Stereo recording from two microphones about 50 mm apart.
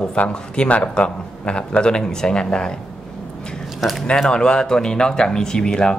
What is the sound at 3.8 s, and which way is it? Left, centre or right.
Speech, centre.